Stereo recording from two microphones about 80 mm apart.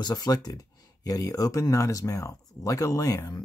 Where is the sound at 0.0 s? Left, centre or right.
Left.